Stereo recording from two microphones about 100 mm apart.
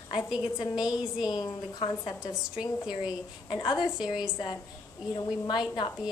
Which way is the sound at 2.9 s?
5° right (ahead or behind).